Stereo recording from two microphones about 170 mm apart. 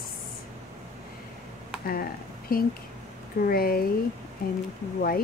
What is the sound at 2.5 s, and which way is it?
Speech, 60° left (ahead or behind).